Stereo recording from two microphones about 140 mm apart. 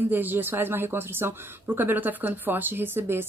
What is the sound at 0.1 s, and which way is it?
Speech, 15° right (ahead or behind).